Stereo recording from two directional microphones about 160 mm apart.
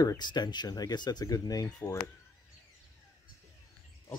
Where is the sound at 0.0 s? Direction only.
25° left (ahead or behind).